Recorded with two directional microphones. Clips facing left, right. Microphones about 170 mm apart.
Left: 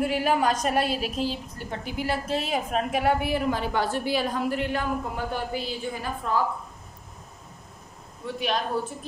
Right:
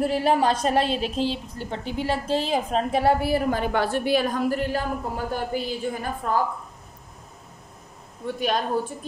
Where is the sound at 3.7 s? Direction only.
60° right (ahead or behind).